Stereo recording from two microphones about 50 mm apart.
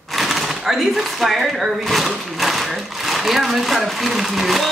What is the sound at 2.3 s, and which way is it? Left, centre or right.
Sewing machine, centre.